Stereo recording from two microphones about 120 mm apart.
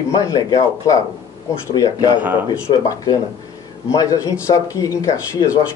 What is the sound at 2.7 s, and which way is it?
Speech, 50° left (ahead or behind).